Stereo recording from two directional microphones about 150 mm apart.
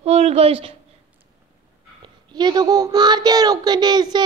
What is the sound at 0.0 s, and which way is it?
Speech, 45° right (ahead or behind).